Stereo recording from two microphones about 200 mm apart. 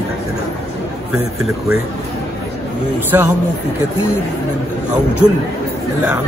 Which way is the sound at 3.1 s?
15° right (ahead or behind).